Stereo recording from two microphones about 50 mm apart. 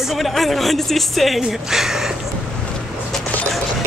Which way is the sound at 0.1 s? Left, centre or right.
Centre.